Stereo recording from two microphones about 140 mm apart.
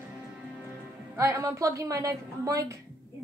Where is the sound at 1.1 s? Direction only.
20° right (ahead or behind).